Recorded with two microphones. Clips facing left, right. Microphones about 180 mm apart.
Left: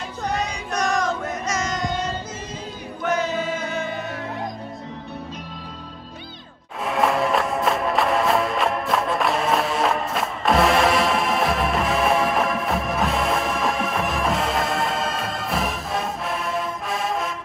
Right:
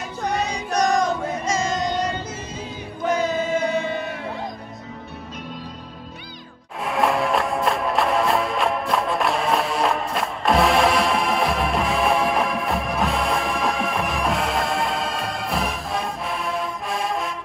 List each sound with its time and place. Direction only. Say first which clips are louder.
0.7 s music: right 4 dB; 35° right (ahead or behind)
6.8 s music: even; centre (ahead or behind)